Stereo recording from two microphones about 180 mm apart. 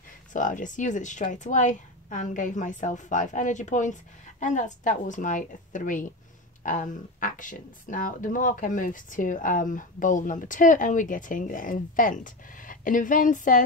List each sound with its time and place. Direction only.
0.3 s speech: 45° left (ahead or behind)